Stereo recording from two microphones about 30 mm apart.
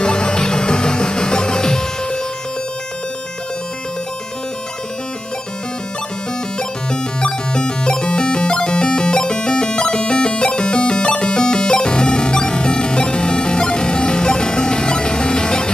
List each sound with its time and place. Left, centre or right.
0.0 s music: left
6.9 s music: left